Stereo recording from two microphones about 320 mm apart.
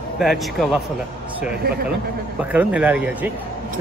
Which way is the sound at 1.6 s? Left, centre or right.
Right.